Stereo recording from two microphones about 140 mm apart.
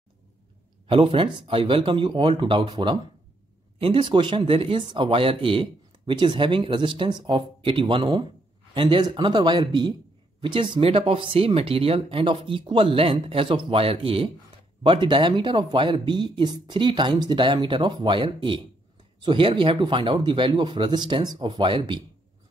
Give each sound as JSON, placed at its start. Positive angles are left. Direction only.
{"t": 0.8, "sound": "speech", "side_deg": -40}